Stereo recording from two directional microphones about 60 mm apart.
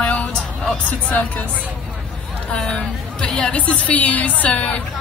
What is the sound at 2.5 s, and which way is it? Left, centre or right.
A woman's voice, centre.